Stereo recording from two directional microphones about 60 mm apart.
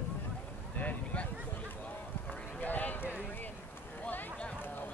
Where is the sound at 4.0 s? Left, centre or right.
Left.